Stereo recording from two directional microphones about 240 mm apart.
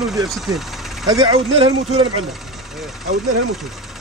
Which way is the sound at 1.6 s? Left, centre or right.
Right.